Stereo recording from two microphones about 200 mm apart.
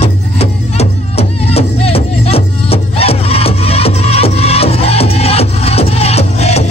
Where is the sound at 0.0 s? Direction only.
30° left (ahead or behind).